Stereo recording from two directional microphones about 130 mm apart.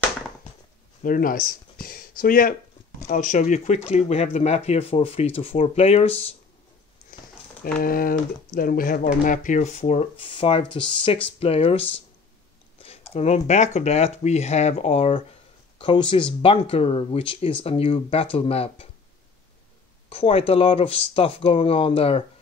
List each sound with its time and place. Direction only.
1.0 s speech: 90° left; by 6.2 s 50° left (ahead or behind)
7.8 s speech: 90° left; by 10.0 s 60° left (ahead or behind)
10.2 s speech: 40° left (ahead or behind)
13.1 s speech: 60° left (ahead or behind)
15.8 s speech: 40° left (ahead or behind)
20.1 s speech: 45° left (ahead or behind)